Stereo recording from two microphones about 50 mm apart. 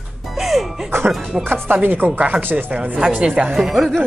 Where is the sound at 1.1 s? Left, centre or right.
Centre.